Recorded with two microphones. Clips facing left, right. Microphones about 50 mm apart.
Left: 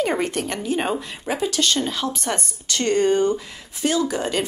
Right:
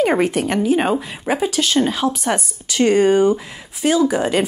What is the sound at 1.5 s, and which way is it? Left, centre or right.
Speech, centre.